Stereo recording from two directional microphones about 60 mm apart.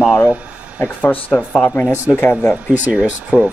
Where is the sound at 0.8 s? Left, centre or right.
Left.